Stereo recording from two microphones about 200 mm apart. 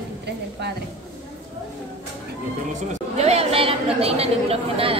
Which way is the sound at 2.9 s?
35° right (ahead or behind).